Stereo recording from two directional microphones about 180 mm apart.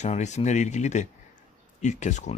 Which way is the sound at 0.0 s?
40° left (ahead or behind).